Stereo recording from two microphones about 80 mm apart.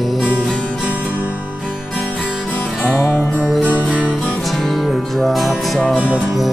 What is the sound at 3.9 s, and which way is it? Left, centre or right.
Music, centre.